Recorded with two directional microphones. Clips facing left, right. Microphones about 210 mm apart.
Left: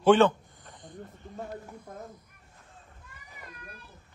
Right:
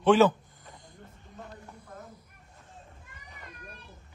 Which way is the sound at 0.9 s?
50° left (ahead or behind).